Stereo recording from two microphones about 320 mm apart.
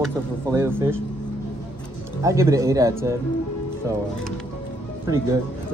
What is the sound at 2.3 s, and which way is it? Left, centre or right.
Speech, centre.